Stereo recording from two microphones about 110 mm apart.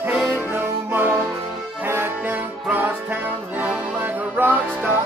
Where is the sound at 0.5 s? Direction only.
15° right (ahead or behind).